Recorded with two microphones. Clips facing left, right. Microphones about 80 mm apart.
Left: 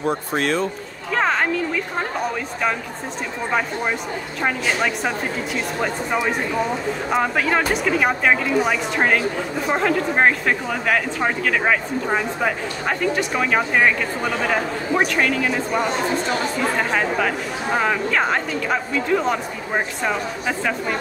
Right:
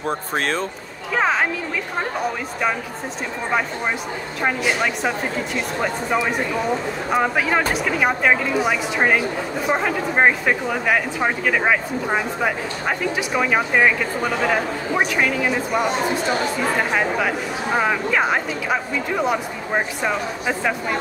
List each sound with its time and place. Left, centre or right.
0.4 s speech: right
1.1 s a sound: centre
4.4 s speech: centre
17.7 s speech: centre